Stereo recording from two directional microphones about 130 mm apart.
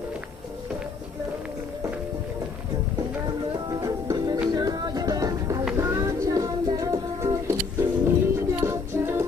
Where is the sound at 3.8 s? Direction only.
30° right (ahead or behind).